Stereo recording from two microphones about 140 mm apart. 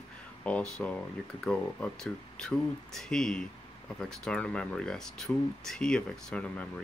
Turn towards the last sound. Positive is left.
turn(degrees=10)  # may be behind; listen again after turning